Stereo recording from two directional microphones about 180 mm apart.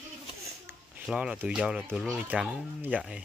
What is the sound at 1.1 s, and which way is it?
Speech, 5° right (ahead or behind).